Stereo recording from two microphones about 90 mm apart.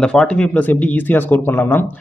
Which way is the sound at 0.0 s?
10° left (ahead or behind).